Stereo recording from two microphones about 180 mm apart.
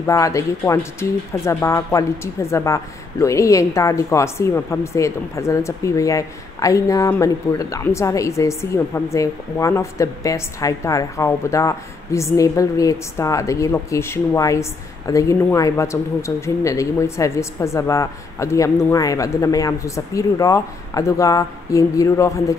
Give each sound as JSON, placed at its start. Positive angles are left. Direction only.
{"t": 0.0, "sound": "speech", "side_deg": 15}